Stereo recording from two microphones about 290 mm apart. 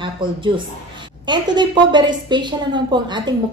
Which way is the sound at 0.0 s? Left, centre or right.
Centre.